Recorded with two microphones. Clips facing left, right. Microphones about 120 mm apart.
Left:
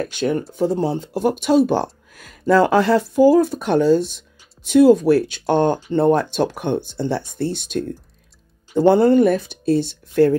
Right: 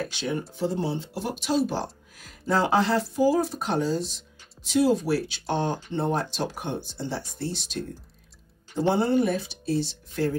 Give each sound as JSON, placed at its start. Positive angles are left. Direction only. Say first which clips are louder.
{"t": 0.0, "sound": "speech", "louder": "left 8 dB", "side_deg": 55}